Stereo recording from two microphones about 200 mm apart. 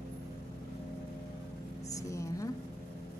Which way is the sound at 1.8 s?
15° left (ahead or behind).